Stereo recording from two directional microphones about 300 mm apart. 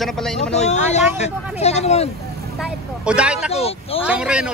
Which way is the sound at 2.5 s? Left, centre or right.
Centre.